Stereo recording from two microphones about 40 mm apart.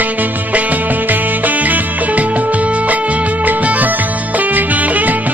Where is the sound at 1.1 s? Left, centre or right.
Right.